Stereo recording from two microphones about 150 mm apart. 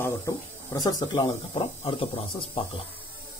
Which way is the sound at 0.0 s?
15° left (ahead or behind).